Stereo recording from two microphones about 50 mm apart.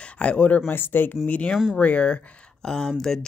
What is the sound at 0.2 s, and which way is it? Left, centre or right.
Speech, left.